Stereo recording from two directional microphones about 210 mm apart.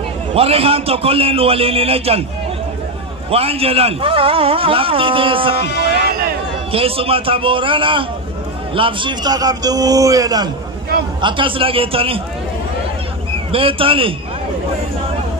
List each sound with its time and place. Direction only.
0.3 s a man's voice: 30° right (ahead or behind)
3.3 s a man's voice: 25° right (ahead or behind)
5.9 s a sound: 45° right (ahead or behind)
6.7 s a man's voice: 25° right (ahead or behind)
13.5 s a man's voice: 25° right (ahead or behind)